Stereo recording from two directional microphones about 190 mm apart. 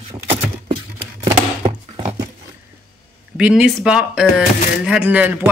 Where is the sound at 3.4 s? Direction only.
5° right (ahead or behind).